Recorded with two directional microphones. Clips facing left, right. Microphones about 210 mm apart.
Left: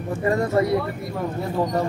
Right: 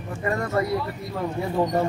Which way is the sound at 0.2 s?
25° left (ahead or behind).